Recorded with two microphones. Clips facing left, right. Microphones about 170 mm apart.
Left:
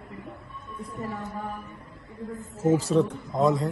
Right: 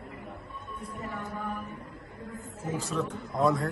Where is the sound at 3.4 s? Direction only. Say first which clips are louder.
Left 3 dB; 20° left (ahead or behind).